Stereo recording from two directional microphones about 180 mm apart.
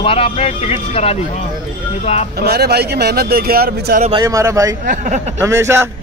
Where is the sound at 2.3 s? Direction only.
60° right (ahead or behind).